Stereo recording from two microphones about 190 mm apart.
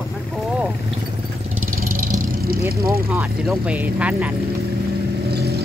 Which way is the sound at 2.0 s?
50° right (ahead or behind).